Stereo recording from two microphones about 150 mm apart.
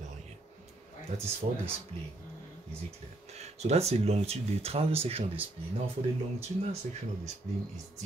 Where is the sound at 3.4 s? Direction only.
45° right (ahead or behind).